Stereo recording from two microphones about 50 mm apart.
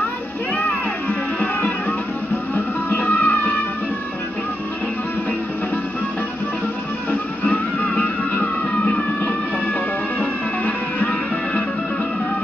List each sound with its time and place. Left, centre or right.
1.4 s music: left
7.1 s music: left
10.1 s music: left